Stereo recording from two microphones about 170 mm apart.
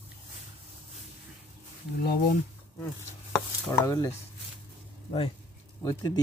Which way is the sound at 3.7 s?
20° left (ahead or behind).